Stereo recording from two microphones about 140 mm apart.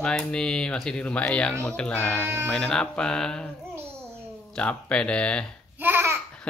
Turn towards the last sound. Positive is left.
turn(degrees=-15)  # may be behind; listen again after turning